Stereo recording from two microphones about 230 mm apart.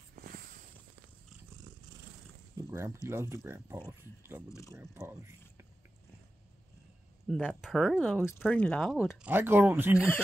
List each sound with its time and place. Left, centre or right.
0.1 s a sound: right
2.5 s a sound: centre
3.1 s speech: centre
4.5 s speech: centre
4.7 s speech: centre
7.2 s speech: centre
9.2 s speech: centre